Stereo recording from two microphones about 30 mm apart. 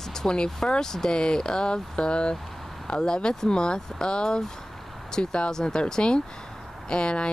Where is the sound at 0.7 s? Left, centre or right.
Left.